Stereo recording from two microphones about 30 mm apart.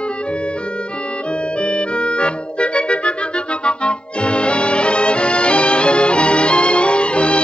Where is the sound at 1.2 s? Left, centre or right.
Left.